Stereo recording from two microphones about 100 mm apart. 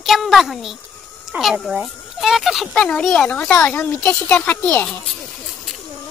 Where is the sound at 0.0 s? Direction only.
Centre (ahead or behind).